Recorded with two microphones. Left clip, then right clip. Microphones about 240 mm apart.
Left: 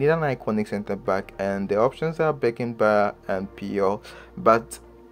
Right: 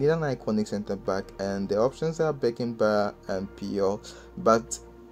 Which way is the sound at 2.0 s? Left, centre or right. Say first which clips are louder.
Left 3 dB; centre.